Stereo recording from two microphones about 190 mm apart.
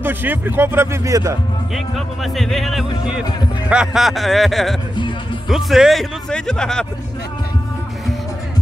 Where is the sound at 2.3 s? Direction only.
Centre (ahead or behind).